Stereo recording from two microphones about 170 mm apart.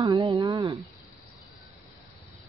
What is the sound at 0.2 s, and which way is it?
Speech, 35° right (ahead or behind).